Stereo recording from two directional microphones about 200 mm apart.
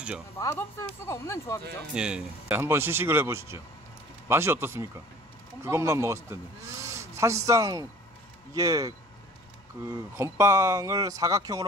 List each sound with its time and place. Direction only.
0.4 s speech: 15° left (ahead or behind)
2.0 s speech: 5° right (ahead or behind)